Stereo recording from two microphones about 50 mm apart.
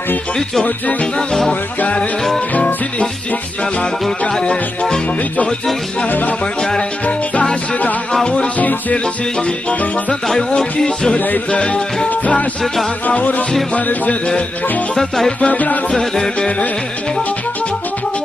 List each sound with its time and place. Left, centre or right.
1.5 s music: left
4.4 s music: centre
6.0 s music: left
8.3 s music: left
10.2 s music: centre
11.1 s music: left
11.5 s music: left
15.0 s music: centre
15.4 s music: left
16.0 s music: centre